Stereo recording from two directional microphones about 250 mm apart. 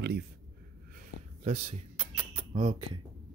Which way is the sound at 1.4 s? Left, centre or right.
Right.